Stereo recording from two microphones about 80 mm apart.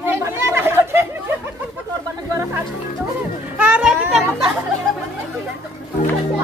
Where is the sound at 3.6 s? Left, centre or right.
Centre.